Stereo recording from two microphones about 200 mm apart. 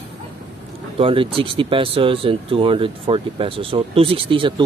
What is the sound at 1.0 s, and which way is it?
Speech, 25° right (ahead or behind).